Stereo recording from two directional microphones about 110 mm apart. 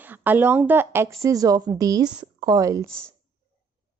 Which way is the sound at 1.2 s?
35° right (ahead or behind).